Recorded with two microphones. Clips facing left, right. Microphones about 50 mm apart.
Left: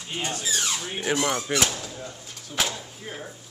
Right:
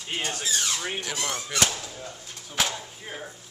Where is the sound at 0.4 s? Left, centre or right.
Centre.